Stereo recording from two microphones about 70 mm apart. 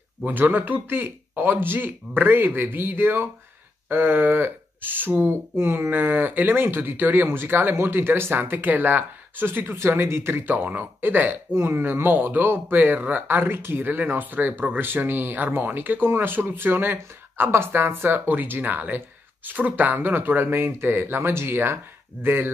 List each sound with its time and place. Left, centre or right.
0.2 s speech: right
9.8 s speech: right